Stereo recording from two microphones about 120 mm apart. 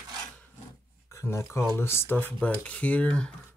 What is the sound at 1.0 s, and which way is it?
Speech, 20° left (ahead or behind).